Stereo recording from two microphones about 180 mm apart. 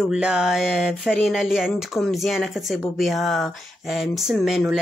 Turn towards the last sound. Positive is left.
turn(degrees=0)  # may be behind; listen again after turning